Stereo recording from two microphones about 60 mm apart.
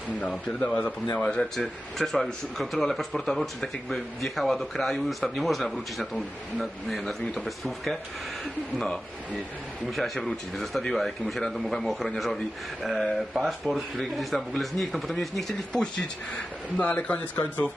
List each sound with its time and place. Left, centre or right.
0.6 s speech: centre
16.8 s speech: left